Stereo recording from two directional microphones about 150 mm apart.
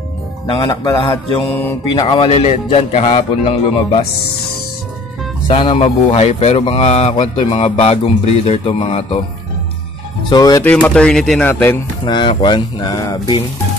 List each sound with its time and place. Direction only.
0.5 s a man's voice: 30° left (ahead or behind)
1.5 s speech: 15° left (ahead or behind)
1.9 s speech: 35° left (ahead or behind)
5.5 s speech: 35° left (ahead or behind)
10.3 s a man's voice: 25° left (ahead or behind)
10.6 s speech: 10° left (ahead or behind)
12.0 s speech: 30° left (ahead or behind)